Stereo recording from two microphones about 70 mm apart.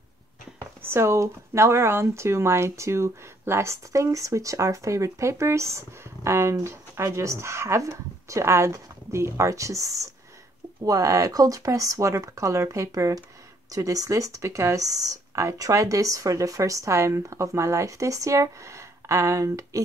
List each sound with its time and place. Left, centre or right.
0.6 s speech: right